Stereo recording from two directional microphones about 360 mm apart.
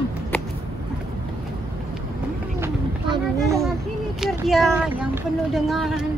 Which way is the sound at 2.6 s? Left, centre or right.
Centre.